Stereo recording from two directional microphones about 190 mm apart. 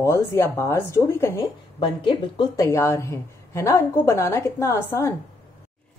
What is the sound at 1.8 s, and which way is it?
A woman's voice, 25° left (ahead or behind).